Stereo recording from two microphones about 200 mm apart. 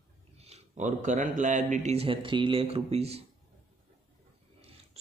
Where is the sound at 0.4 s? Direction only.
35° right (ahead or behind).